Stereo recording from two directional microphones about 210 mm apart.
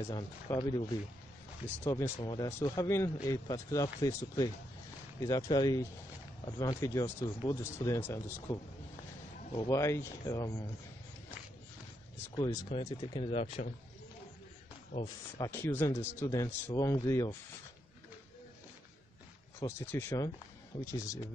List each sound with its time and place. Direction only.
0.0 s speech: 15° left (ahead or behind)
1.9 s speech: 15° left (ahead or behind)
9.7 s speech: 15° left (ahead or behind)
12.6 s speech: 25° left (ahead or behind)
15.3 s speech: 15° left (ahead or behind)
19.6 s speech: 10° left (ahead or behind)